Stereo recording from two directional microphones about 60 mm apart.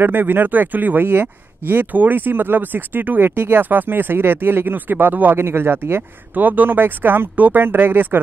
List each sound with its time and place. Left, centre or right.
0.0 s speech: right